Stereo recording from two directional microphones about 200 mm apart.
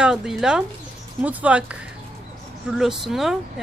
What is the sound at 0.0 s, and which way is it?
Speech, 5° right (ahead or behind).